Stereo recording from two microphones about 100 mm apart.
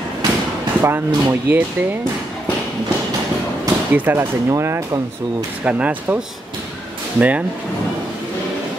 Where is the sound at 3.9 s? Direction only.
20° right (ahead or behind).